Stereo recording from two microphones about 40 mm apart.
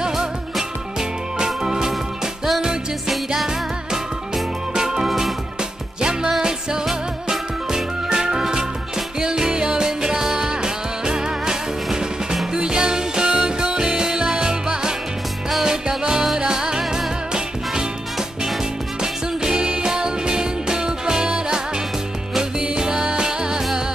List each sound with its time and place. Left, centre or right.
0.0 s music: centre
4.7 s music: centre
18.9 s music: centre